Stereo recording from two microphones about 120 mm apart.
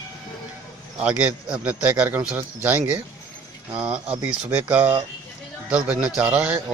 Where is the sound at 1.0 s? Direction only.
10° right (ahead or behind).